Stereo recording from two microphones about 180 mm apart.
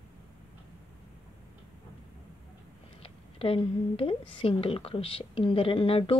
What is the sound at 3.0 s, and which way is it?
A woman's voice, 30° left (ahead or behind).